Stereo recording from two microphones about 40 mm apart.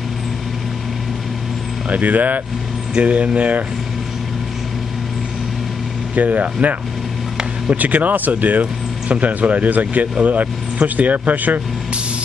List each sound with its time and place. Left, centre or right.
1.9 s speech: right
6.1 s speech: right